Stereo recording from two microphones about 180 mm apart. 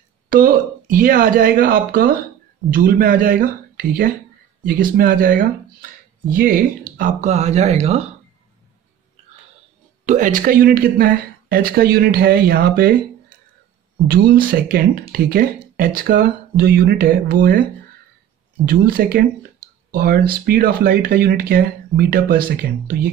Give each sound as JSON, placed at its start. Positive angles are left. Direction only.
{"t": 0.3, "sound": "speech", "side_deg": -50}
{"t": 10.0, "sound": "speech", "side_deg": -45}
{"t": 14.0, "sound": "speech", "side_deg": -55}
{"t": 18.7, "sound": "speech", "side_deg": -55}